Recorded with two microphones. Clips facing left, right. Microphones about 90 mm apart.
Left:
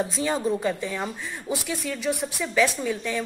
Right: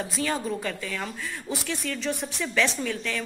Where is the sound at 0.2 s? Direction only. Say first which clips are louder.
Left 2 dB; 20° left (ahead or behind).